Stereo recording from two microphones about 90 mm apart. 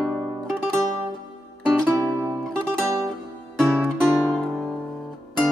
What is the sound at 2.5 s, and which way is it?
Music, 10° left (ahead or behind).